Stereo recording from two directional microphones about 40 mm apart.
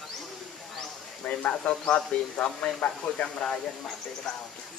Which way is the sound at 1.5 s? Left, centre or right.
Left.